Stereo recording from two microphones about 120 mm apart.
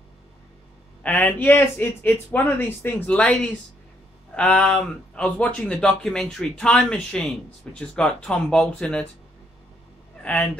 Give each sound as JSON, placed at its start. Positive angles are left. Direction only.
{"t": 1.0, "sound": "speech", "side_deg": 15}
{"t": 4.4, "sound": "speech", "side_deg": 10}
{"t": 10.2, "sound": "speech", "side_deg": 10}